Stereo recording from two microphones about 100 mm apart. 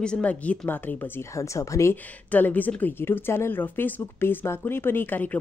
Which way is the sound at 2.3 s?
15° left (ahead or behind).